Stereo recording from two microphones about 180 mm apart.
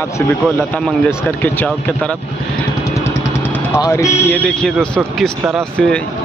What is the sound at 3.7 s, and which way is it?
Speech, 15° left (ahead or behind).